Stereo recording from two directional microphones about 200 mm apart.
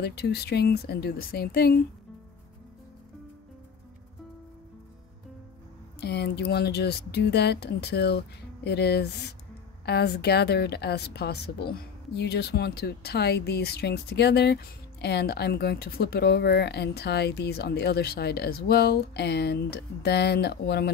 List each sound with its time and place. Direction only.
0.0 s speech: 55° left (ahead or behind)
5.9 s speech: 55° left (ahead or behind)